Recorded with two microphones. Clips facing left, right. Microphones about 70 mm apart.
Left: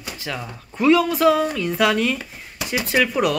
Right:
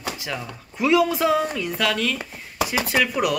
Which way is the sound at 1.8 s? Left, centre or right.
Left.